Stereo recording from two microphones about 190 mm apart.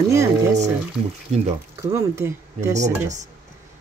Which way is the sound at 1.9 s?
15° right (ahead or behind).